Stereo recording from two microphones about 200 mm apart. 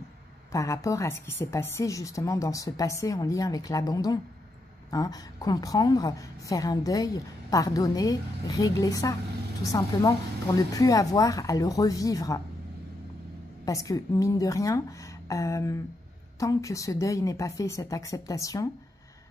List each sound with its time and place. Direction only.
0.5 s a woman's voice: 15° left (ahead or behind)
13.7 s a woman's voice: 15° left (ahead or behind)